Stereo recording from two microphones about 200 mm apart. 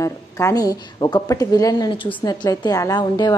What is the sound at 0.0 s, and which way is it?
A woman's voice, 15° left (ahead or behind).